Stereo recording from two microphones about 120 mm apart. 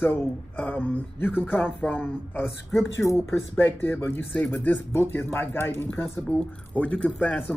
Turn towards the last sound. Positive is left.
turn(degrees=10)  # may be behind; listen again after turning